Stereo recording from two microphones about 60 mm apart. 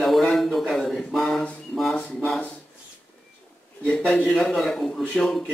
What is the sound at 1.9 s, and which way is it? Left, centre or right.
Speech, centre.